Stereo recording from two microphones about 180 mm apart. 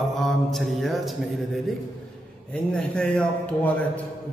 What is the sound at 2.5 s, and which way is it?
A man's voice, 5° left (ahead or behind).